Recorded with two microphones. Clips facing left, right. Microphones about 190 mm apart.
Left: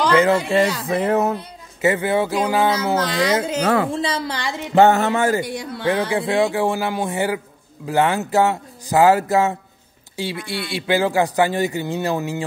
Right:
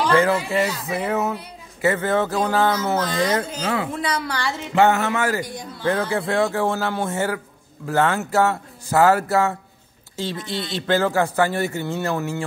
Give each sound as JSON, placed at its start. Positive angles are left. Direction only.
{"t": 0.1, "sound": "speech", "side_deg": 20}
{"t": 0.8, "sound": "a sound", "side_deg": 35}
{"t": 1.8, "sound": "a man's voice", "side_deg": 15}
{"t": 3.0, "sound": "speech", "side_deg": 80}
{"t": 3.4, "sound": "speech", "side_deg": 65}
{"t": 3.9, "sound": "a woman's voice", "side_deg": 25}
{"t": 4.7, "sound": "a sound", "side_deg": 35}
{"t": 5.4, "sound": "speech", "side_deg": 75}
{"t": 5.9, "sound": "a man's voice", "side_deg": 15}